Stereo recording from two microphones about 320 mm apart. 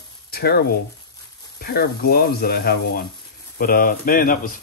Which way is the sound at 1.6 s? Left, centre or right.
Left.